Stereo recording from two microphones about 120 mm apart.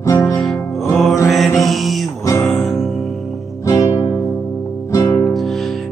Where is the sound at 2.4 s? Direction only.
Centre (ahead or behind).